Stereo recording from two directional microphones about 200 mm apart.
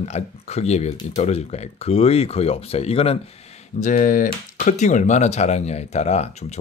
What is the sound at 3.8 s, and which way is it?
Speech, 40° left (ahead or behind).